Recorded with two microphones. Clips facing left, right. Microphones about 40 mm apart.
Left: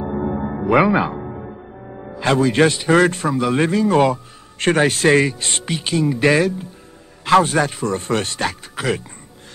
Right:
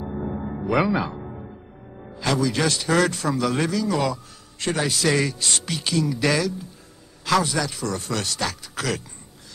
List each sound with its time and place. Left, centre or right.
0.0 s music: left
2.7 s a man's voice: left